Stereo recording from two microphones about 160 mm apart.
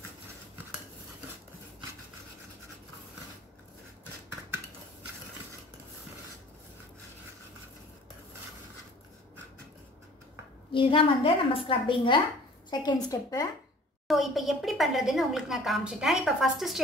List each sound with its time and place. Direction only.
10.7 s a woman's voice: 30° left (ahead or behind)
14.0 s a woman's voice: centre (ahead or behind)